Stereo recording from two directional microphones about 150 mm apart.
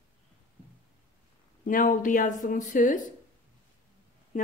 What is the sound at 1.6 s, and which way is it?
Speech, 60° left (ahead or behind).